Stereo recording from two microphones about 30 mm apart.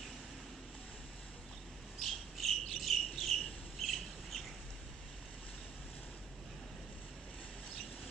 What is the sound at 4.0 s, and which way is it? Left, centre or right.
Squawk, centre.